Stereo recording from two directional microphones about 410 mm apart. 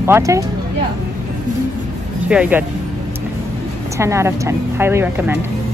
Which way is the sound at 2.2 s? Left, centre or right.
Centre.